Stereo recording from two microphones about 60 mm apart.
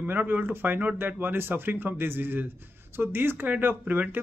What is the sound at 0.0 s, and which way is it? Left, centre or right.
Speech, right.